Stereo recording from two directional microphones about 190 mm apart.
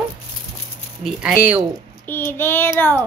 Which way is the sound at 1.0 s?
Centre (ahead or behind).